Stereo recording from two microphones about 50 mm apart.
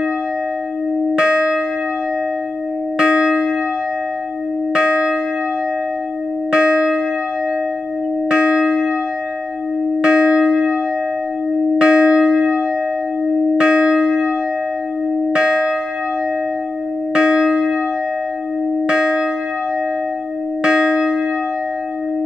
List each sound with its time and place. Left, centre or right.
1.1 s church bell: centre
3.0 s church bell: centre
4.7 s church bell: centre
6.5 s church bell: centre
8.3 s church bell: centre
10.0 s church bell: centre
11.8 s church bell: centre
15.3 s church bell: centre
17.1 s church bell: centre
18.9 s church bell: centre
20.6 s church bell: centre